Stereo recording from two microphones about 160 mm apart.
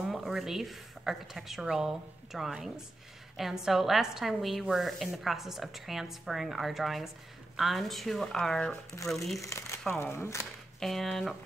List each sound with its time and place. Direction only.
0.0 s a woman's voice: centre (ahead or behind)
9.4 s speech: 20° left (ahead or behind)
10.8 s a woman's voice: centre (ahead or behind)